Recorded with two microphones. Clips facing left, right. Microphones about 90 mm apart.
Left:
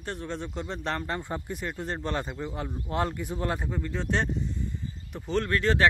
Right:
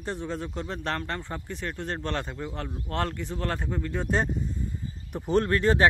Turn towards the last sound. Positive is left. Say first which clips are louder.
# right 2 dB
turn(degrees=-30)  # may be behind; listen again after turning